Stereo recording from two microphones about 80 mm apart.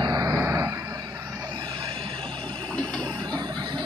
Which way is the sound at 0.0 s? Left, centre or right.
Right.